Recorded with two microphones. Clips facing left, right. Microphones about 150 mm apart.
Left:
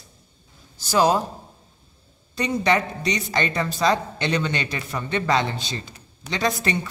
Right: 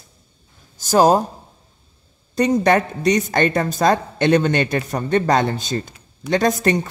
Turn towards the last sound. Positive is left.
turn(degrees=-45)  # may be behind; listen again after turning